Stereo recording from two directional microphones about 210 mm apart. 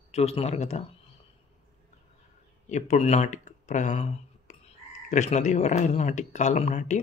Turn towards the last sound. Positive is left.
turn(degrees=35)  # may be behind; listen again after turning